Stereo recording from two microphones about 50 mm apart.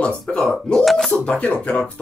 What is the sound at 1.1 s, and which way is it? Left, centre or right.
Speech, left.